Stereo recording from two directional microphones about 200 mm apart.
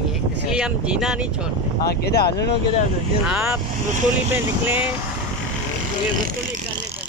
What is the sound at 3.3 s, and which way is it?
Speech, 10° right (ahead or behind).